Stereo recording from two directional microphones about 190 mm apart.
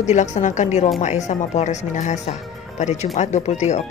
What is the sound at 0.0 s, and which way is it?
Speech, 40° left (ahead or behind).